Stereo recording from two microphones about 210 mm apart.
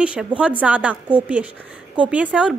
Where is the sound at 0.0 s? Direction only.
5° right (ahead or behind).